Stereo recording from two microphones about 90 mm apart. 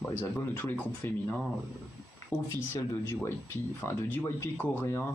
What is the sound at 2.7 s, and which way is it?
Speech, 35° left (ahead or behind).